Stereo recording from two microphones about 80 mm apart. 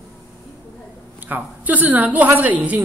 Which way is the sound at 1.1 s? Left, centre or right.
Right.